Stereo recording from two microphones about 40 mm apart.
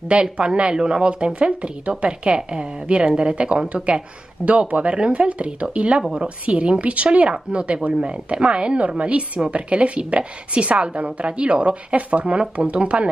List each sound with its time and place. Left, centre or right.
0.1 s a woman's voice: right